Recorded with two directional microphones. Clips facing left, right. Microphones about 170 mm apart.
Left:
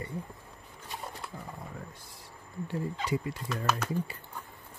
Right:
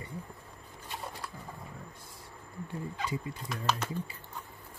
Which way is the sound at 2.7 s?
75° left (ahead or behind).